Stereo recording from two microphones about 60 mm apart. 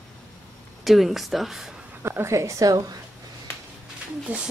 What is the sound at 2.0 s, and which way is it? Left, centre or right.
Speech, right.